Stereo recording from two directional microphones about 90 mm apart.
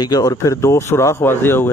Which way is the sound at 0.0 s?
45° left (ahead or behind).